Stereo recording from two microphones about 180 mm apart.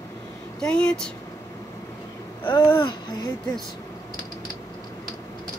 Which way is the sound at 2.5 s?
20° left (ahead or behind).